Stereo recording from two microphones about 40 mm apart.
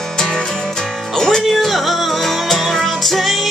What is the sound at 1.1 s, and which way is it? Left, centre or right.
Speech, centre.